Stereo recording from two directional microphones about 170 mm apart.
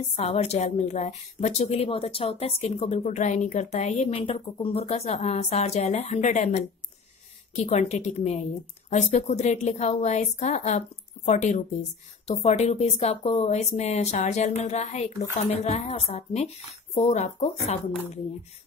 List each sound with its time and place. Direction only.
0.1 s a woman's voice: 40° left (ahead or behind)